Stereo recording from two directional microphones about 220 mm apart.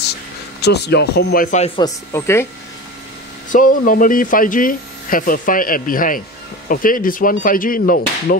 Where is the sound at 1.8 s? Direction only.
10° left (ahead or behind).